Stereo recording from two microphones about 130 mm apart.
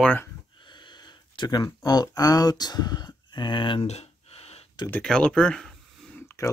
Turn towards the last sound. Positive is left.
turn(degrees=25)  # may be behind; listen again after turning